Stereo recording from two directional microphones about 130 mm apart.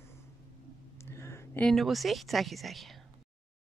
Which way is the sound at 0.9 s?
20° left (ahead or behind).